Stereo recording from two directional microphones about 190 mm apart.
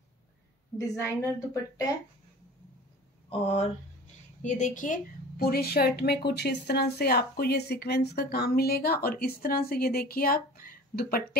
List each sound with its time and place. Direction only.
0.7 s a woman's voice: 15° left (ahead or behind)
4.4 s a woman's voice: 40° left (ahead or behind)